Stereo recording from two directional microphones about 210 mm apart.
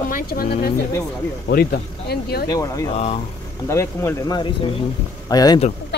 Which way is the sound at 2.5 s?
15° left (ahead or behind).